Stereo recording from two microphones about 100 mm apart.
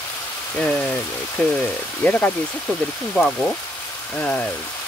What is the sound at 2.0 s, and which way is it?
Speech, 15° left (ahead or behind).